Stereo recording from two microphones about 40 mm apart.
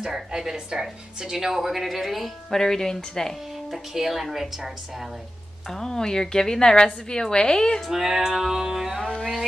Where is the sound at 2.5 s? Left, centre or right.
Centre.